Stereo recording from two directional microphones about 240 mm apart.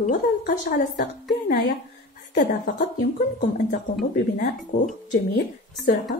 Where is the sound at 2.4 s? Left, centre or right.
Left.